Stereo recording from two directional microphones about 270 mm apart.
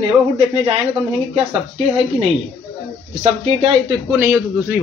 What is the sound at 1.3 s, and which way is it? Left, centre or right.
Speech, right.